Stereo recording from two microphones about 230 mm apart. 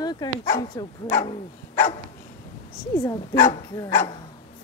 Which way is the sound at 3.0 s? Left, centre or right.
Centre.